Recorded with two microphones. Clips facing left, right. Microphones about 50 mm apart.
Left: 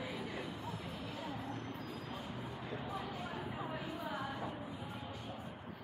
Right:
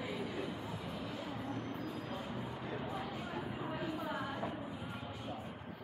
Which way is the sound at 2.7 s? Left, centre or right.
Centre.